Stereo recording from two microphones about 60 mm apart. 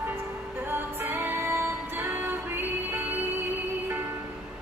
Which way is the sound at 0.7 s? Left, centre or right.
Right.